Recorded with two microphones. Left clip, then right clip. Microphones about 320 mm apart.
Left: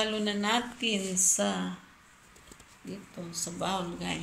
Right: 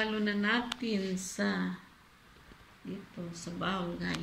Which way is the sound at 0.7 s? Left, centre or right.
Left.